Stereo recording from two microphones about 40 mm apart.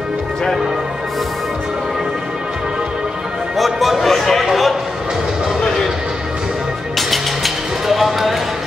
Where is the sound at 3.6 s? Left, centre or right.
Centre.